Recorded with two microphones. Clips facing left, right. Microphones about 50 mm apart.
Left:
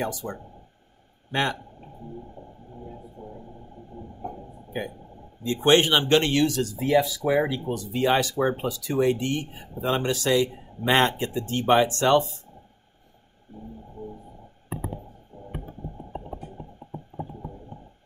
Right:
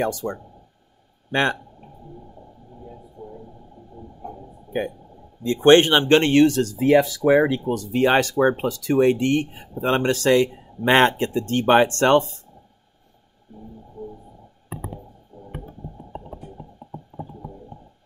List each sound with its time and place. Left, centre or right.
0.0 s speech: right
3.2 s speech: left
5.4 s speech: right
15.3 s a sound: left